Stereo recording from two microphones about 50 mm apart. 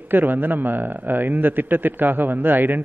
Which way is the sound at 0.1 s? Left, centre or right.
Right.